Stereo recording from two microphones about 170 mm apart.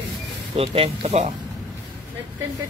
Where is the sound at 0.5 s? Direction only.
35° right (ahead or behind).